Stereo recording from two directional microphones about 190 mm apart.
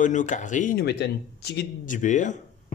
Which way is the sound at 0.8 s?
60° left (ahead or behind).